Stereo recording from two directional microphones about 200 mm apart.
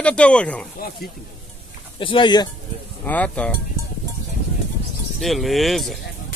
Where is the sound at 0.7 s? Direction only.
50° left (ahead or behind).